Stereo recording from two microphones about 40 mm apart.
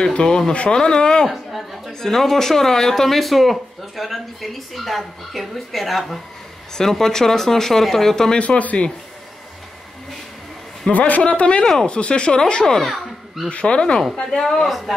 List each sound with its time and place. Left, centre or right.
0.0 s speech: centre
1.2 s speech: centre
6.8 s speech: centre
8.4 s speech: left
10.9 s speech: left
12.8 s a sound: centre
13.5 s speech: left
13.7 s speech: left
14.3 s speech: centre